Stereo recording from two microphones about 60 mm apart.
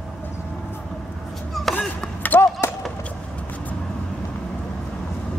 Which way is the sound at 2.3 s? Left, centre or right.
Left.